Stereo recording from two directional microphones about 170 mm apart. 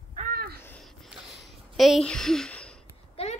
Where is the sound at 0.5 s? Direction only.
10° left (ahead or behind).